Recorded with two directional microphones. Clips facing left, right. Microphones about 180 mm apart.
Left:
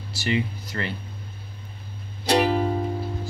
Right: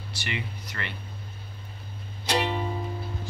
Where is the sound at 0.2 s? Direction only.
30° left (ahead or behind).